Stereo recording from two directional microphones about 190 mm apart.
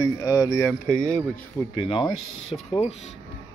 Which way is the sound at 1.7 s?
25° left (ahead or behind).